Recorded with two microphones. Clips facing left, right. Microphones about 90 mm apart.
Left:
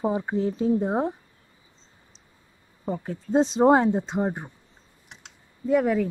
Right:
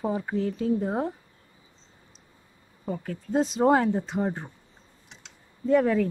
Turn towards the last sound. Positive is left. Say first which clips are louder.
# even
turn(degrees=10)  # may be behind; listen again after turning